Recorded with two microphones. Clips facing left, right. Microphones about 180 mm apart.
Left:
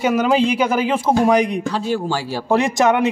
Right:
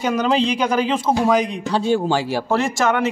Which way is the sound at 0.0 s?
5° left (ahead or behind).